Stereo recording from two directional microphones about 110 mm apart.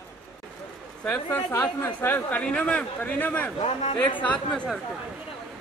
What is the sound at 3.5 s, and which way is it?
Speech, 70° left (ahead or behind).